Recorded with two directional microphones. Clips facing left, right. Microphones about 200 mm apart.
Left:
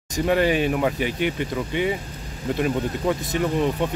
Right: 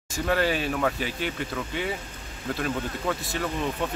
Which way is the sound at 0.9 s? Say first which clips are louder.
Left 6 dB; 60° left (ahead or behind).